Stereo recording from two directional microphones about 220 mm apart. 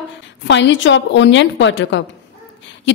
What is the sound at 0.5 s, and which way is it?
A woman's voice, 55° left (ahead or behind).